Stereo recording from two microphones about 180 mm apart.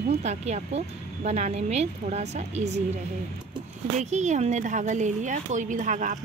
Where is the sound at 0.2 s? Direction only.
40° right (ahead or behind).